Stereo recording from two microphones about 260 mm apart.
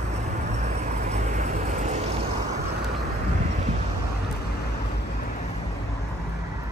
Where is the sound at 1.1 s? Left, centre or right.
Right.